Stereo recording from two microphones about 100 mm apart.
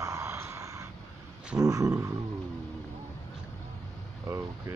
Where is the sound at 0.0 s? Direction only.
30° right (ahead or behind).